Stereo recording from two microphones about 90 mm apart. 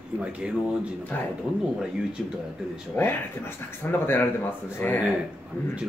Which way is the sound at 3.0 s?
25° left (ahead or behind).